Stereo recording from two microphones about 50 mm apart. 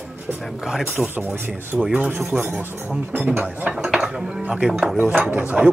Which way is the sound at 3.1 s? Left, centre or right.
Right.